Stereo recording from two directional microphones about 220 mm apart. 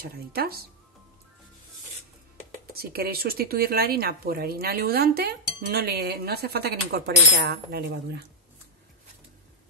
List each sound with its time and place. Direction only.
0.0 s speech: 45° right (ahead or behind)
2.6 s speech: 45° right (ahead or behind)